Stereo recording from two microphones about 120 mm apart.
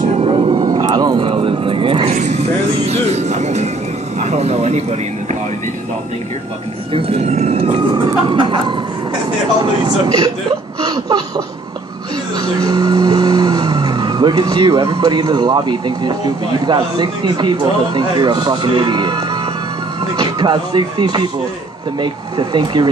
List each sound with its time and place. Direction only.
0.5 s vehicle: 35° right (ahead or behind)
2.0 s music: 70° right (ahead or behind)
4.2 s a sound: 65° right (ahead or behind)
6.9 s emergency vehicle: 50° right (ahead or behind)
7.9 s snicker: 40° right (ahead or behind)
9.6 s vehicle: 35° right (ahead or behind)
10.8 s a sound: 35° right (ahead or behind)
12.4 s vehicle: 35° right (ahead or behind)
16.6 s speech: 35° right (ahead or behind)